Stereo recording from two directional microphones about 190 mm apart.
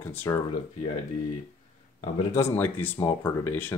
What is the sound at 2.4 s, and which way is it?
Speech, 10° left (ahead or behind).